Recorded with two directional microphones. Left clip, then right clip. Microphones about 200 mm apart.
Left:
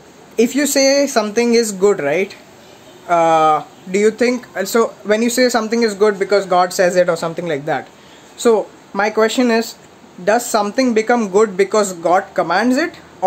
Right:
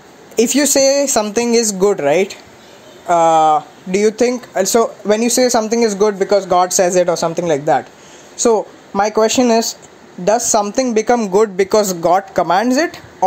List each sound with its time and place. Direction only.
0.4 s speech: 25° right (ahead or behind)